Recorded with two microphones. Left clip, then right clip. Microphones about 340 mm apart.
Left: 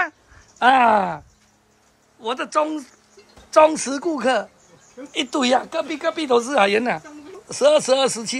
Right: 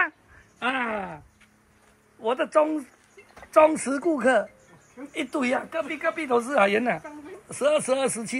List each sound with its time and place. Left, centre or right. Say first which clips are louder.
0.8 s speech: left 14 dB; left
2.2 s speech: even; centre